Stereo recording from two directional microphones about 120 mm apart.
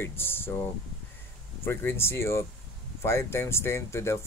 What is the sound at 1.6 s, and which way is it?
Speech, 20° left (ahead or behind).